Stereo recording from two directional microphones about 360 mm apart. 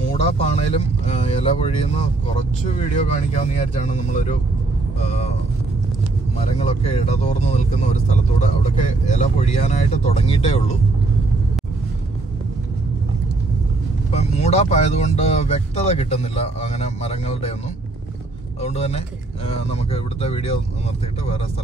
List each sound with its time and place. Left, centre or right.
0.1 s speech: centre
6.3 s speech: centre
14.1 s speech: centre
18.6 s speech: centre